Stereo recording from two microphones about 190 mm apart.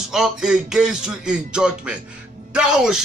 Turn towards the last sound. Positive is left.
turn(degrees=-5)  # may be behind; listen again after turning